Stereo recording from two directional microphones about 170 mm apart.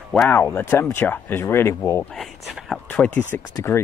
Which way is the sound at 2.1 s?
Centre (ahead or behind).